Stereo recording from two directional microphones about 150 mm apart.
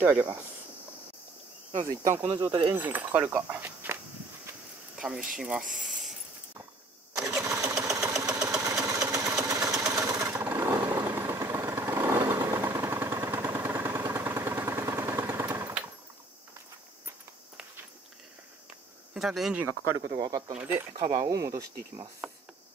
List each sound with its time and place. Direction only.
0.0 s speech: 15° right (ahead or behind)
1.7 s cricket: 55° right (ahead or behind)
2.2 s speech: 35° right (ahead or behind)
2.7 s speech: 10° right (ahead or behind)
4.9 s a sound: 5° right (ahead or behind)
5.6 s a sound: 60° right (ahead or behind)
7.2 s sewing machine: 20° right (ahead or behind)
19.1 s speech: 5° right (ahead or behind)
19.7 s speech: 20° right (ahead or behind)
20.5 s speech: 10° right (ahead or behind)
21.2 s speech: 25° right (ahead or behind)